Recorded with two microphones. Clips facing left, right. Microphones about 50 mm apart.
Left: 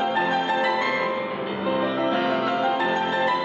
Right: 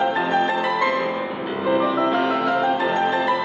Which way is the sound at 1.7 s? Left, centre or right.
Right.